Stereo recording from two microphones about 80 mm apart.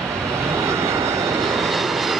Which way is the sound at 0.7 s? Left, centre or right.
Right.